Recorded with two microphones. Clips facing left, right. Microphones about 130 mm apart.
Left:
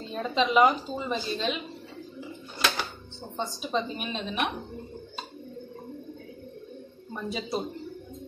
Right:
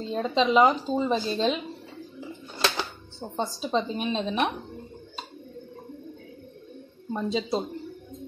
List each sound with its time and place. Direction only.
0.1 s a woman's voice: 30° right (ahead or behind)
2.6 s speech: 25° right (ahead or behind)
7.2 s a woman's voice: 25° right (ahead or behind)